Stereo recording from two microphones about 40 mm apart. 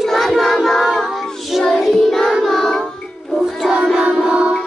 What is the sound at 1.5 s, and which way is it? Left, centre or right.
Child singing, centre.